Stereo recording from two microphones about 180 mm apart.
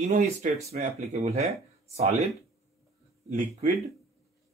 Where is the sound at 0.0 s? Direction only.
40° right (ahead or behind).